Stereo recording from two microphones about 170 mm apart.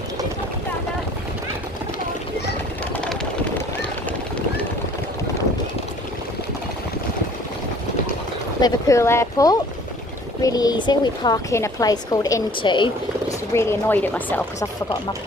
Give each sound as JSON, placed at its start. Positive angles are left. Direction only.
{"t": 8.5, "sound": "speech", "side_deg": 20}
{"t": 13.5, "sound": "speech", "side_deg": 15}